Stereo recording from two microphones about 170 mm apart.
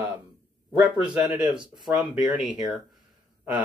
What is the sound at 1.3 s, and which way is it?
Speech, 5° right (ahead or behind).